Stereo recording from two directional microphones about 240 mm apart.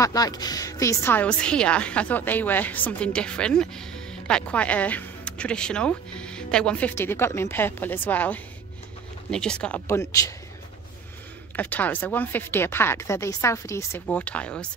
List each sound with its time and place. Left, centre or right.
0.0 s a woman's voice: centre
11.5 s a woman's voice: centre